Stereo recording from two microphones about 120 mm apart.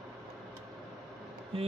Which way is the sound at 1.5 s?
50° right (ahead or behind).